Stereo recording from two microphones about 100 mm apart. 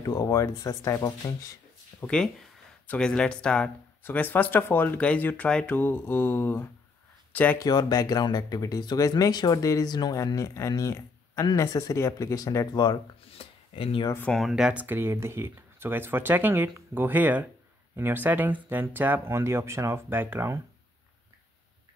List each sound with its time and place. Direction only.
0.0 s speech: 35° left (ahead or behind)
2.0 s speech: 10° left (ahead or behind)
5.7 s mantra: 20° left (ahead or behind)
7.5 s speech: 35° left (ahead or behind)
13.3 s speech: 70° left (ahead or behind)
14.5 s speech: 10° right (ahead or behind)